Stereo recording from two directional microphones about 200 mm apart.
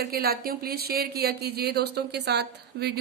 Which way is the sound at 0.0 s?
50° right (ahead or behind).